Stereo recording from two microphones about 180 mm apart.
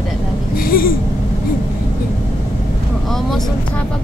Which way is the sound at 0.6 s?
55° left (ahead or behind).